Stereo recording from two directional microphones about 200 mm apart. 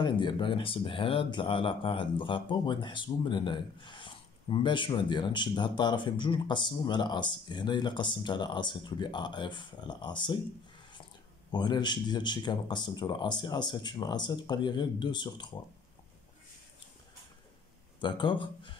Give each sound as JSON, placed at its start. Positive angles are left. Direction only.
{"t": 0.0, "sound": "speech", "side_deg": 25}
{"t": 11.5, "sound": "speech", "side_deg": 20}
{"t": 18.0, "sound": "speech", "side_deg": 25}